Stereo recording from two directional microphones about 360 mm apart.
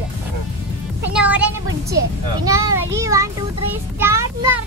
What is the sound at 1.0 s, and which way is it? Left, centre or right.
Speech, centre.